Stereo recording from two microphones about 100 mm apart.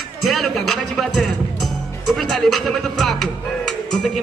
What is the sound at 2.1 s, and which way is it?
Music, centre (ahead or behind).